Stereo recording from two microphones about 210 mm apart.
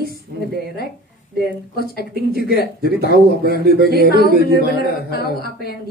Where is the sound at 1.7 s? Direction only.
45° left (ahead or behind).